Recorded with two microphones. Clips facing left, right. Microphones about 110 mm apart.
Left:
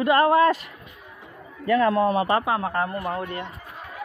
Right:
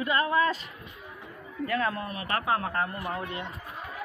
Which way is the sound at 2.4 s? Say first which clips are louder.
Left 3 dB; 80° left.